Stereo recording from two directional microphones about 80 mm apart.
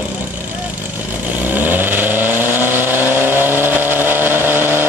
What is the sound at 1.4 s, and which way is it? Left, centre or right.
Vehicle, right.